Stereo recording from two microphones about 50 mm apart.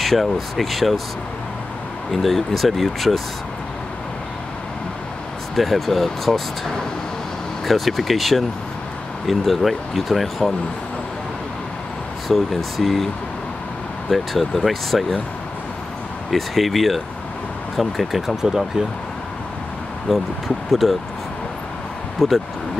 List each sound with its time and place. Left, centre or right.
0.0 s speech: centre
2.0 s speech: centre
5.6 s speech: centre
12.3 s speech: centre
14.1 s speech: centre
16.3 s speech: centre
20.1 s speech: centre
22.2 s speech: centre